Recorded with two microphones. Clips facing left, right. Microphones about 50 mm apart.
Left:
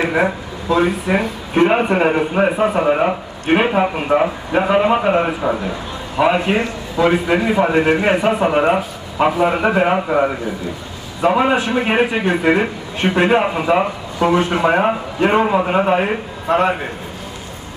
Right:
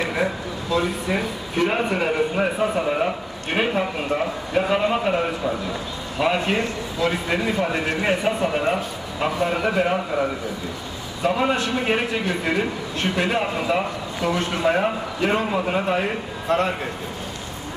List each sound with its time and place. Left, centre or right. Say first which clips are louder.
0.0 s a sound: left 6 dB; left
0.7 s a man's voice: left 6 dB; left
6.1 s a man's voice: left 6 dB; left